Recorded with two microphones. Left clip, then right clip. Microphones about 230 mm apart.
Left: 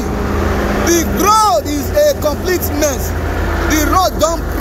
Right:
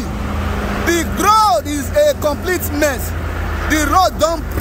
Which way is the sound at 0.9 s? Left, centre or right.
Centre.